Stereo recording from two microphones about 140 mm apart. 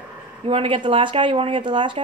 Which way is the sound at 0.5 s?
40° right (ahead or behind).